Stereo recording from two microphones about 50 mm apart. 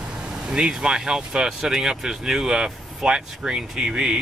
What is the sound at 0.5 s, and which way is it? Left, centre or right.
Speech, centre.